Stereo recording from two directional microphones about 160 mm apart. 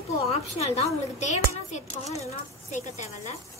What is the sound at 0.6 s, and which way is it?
A woman's voice, 40° left (ahead or behind).